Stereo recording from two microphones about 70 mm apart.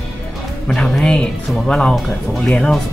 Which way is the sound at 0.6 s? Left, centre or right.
Centre.